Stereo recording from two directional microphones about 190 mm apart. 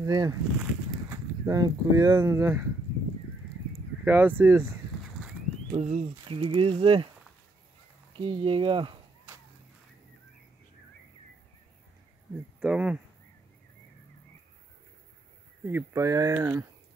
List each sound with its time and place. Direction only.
0.0 s speech: 20° right (ahead or behind)
4.0 s speech: 10° right (ahead or behind)
5.8 s speech: 35° right (ahead or behind)
8.2 s speech: 30° right (ahead or behind)
12.5 s speech: 5° right (ahead or behind)
15.6 s speech: 15° right (ahead or behind)